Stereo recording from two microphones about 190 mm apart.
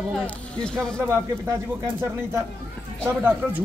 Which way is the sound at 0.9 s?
15° right (ahead or behind).